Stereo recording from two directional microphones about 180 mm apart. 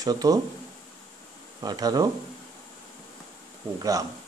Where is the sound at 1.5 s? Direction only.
20° right (ahead or behind).